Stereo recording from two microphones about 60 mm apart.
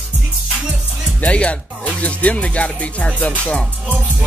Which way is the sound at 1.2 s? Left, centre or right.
Left.